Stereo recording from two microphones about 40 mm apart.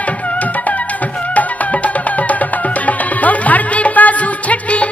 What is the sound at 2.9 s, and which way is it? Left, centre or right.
Music, left.